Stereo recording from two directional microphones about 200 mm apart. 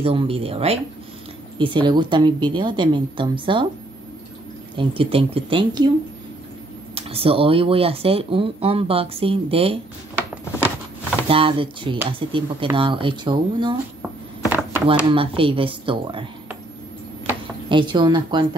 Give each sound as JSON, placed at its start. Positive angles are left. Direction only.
{"t": 0.0, "sound": "speech", "side_deg": -30}
{"t": 4.7, "sound": "speech", "side_deg": -30}
{"t": 7.0, "sound": "speech", "side_deg": -30}
{"t": 11.2, "sound": "speech", "side_deg": -25}
{"t": 14.0, "sound": "a sound", "side_deg": -10}
{"t": 15.0, "sound": "speech", "side_deg": -25}
{"t": 17.6, "sound": "speech", "side_deg": -25}